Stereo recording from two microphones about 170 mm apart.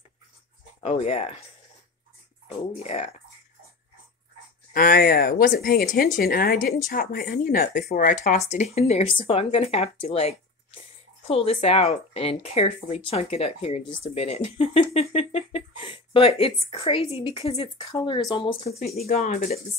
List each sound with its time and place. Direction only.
0.8 s speech: 35° left (ahead or behind)
2.5 s speech: 35° left (ahead or behind)
4.7 s speech: 55° left (ahead or behind); by 17.6 s 35° left (ahead or behind)
17.7 s speech: 25° left (ahead or behind); by 19.6 s 45° left (ahead or behind)